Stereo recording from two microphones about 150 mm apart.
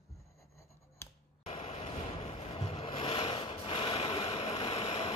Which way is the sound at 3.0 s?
40° left (ahead or behind).